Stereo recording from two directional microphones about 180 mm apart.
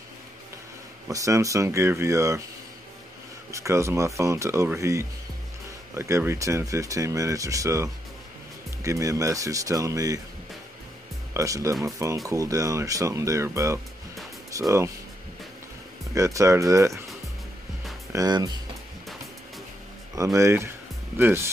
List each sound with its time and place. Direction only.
1.0 s speech: 15° right (ahead or behind)
3.5 s speech: 15° right (ahead or behind)
11.3 s speech: 15° right (ahead or behind)
16.2 s speech: 15° right (ahead or behind)
18.1 s speech: 20° right (ahead or behind)
20.3 s speech: 15° right (ahead or behind)